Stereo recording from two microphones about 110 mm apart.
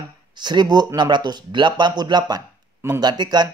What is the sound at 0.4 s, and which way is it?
Speech, 40° right (ahead or behind).